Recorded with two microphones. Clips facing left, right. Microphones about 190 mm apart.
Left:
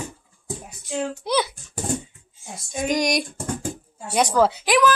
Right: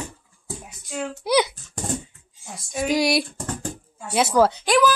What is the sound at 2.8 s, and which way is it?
Speech, 5° right (ahead or behind).